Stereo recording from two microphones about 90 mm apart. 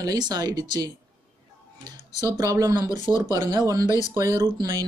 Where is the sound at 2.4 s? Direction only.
45° right (ahead or behind).